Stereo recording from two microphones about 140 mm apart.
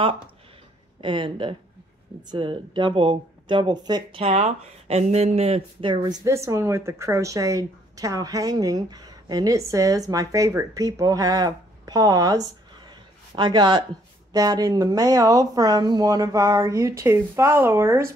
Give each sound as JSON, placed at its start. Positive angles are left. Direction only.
{"t": 1.0, "sound": "speech", "side_deg": -35}
{"t": 4.2, "sound": "speech", "side_deg": -45}
{"t": 6.0, "sound": "speech", "side_deg": -20}